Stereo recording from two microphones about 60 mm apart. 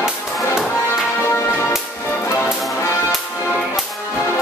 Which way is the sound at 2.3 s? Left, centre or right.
Left.